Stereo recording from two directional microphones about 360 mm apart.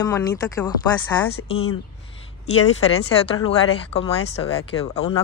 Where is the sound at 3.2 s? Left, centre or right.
Centre.